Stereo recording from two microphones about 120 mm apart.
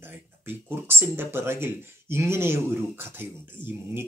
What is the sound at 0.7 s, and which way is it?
Speech, 20° right (ahead or behind).